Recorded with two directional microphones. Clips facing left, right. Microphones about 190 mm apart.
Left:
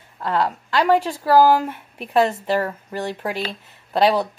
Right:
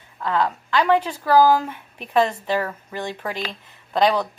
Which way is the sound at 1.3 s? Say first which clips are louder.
Left 1 dB; 10° left (ahead or behind).